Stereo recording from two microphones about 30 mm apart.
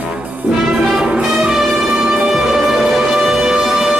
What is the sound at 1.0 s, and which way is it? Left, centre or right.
Music, centre.